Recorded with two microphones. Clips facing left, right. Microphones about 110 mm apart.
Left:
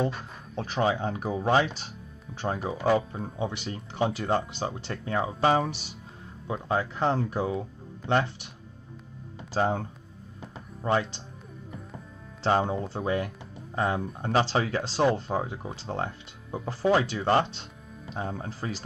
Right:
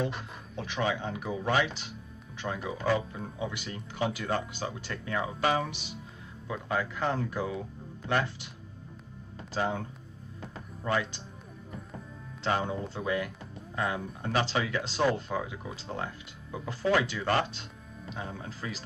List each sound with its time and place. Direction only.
0.6 s speech: 40° left (ahead or behind)
9.5 s speech: 35° left (ahead or behind)
12.4 s speech: 30° left (ahead or behind)
18.1 s speech: 40° left (ahead or behind)